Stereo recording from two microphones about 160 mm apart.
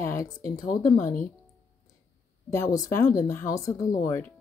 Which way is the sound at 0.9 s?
55° left (ahead or behind).